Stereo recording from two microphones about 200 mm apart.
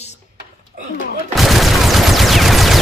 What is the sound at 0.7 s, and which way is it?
Speech, 45° right (ahead or behind).